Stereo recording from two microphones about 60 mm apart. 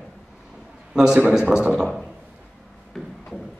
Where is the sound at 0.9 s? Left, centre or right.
Centre.